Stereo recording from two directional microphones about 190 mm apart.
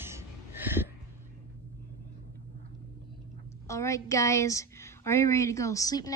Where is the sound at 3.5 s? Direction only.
15° left (ahead or behind).